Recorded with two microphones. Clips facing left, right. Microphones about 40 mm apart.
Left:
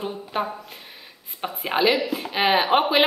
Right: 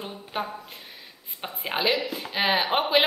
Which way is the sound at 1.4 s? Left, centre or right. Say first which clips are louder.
Left 5 dB; centre.